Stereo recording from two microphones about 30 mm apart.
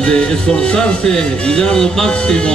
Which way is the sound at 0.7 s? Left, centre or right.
Left.